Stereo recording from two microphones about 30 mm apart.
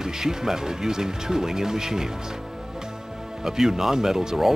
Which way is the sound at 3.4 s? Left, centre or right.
Centre.